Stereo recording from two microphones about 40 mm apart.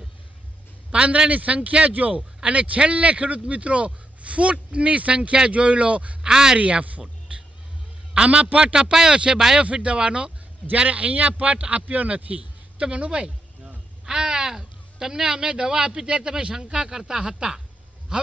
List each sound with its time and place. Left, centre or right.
0.9 s speech: right
6.2 s a man's voice: centre
6.6 s a man's voice: right; by 9.6 s centre
9.6 s speech: right
14.0 s a sound: centre
14.6 s a man's voice: centre